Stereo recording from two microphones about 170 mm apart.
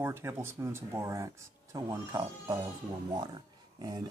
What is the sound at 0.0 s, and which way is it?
Speech, 15° right (ahead or behind).